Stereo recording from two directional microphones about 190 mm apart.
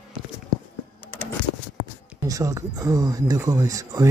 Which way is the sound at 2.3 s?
20° right (ahead or behind).